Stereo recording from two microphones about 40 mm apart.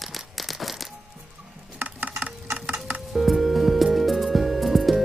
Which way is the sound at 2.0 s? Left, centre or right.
Right.